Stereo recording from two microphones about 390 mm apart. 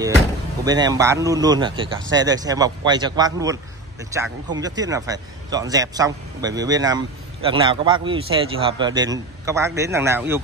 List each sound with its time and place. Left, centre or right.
0.7 s speech: centre